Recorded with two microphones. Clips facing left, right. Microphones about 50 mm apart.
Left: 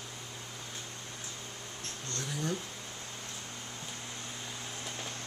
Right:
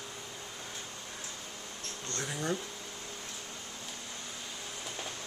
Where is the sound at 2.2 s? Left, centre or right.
Centre.